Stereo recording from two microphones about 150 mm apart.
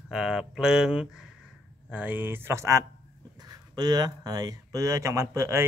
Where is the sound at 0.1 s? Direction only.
5° right (ahead or behind).